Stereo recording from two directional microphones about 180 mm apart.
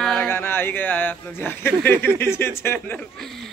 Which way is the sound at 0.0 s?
5° left (ahead or behind).